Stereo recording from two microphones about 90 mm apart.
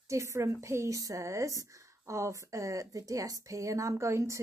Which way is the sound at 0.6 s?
35° right (ahead or behind).